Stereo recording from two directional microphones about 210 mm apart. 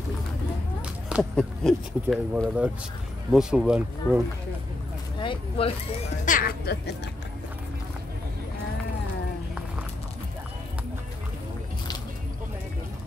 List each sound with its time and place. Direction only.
1.3 s speech: centre (ahead or behind)
5.2 s speech: 25° left (ahead or behind)
6.2 s speech: 40° left (ahead or behind)